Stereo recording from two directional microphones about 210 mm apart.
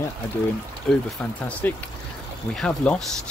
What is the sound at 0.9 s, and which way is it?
Speech, 5° left (ahead or behind).